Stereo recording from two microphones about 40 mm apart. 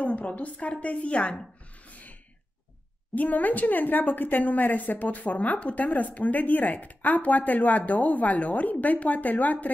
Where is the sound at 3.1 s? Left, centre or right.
Left.